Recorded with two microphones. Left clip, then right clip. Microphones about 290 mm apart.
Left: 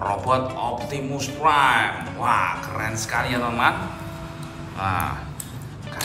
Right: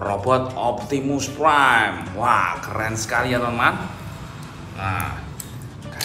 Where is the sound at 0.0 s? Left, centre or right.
Centre.